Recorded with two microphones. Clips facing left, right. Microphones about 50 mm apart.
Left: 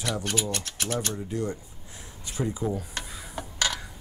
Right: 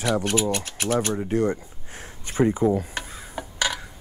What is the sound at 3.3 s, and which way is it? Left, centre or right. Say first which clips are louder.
Crow: right 3 dB; centre.